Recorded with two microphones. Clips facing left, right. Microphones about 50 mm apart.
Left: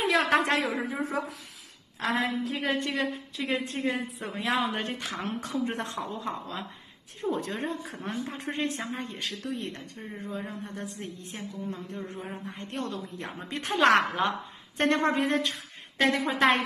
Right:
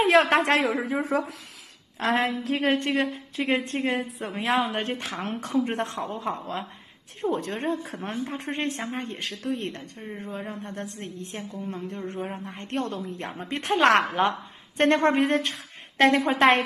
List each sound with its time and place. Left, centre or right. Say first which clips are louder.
0.0 s a man's voice: right 5 dB; right
1.0 s speech: right 5 dB; right
2.0 s a woman's voice: right 4 dB; right
2.9 s a woman's voice: right 4 dB; right
9.9 s speech: right 3 dB; centre
10.2 s a woman's voice: right 1 dB; right
10.6 s a woman's voice: right 2 dB; right
12.3 s a woman's voice: right 4 dB; right
12.9 s a woman's voice: right 4 dB; right